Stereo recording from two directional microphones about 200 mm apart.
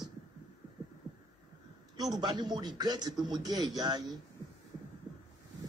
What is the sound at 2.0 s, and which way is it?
A man's voice, 20° right (ahead or behind).